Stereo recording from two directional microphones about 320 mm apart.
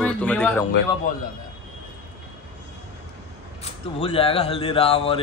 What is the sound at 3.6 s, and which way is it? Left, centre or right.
Speech, centre.